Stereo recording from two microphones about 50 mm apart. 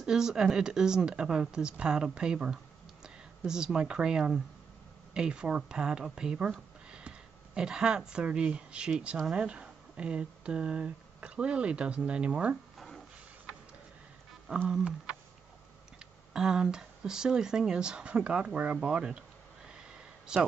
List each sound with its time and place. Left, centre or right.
0.0 s speech: centre
6.5 s a sound: centre
9.3 s speech: right
12.7 s a sound: centre
14.5 s speech: right
16.3 s speech: centre
20.3 s speech: centre